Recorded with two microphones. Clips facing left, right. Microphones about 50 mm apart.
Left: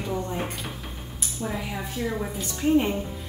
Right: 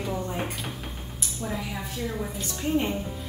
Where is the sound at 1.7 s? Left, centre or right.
Centre.